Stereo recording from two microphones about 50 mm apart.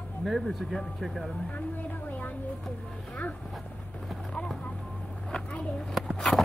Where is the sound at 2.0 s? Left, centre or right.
Left.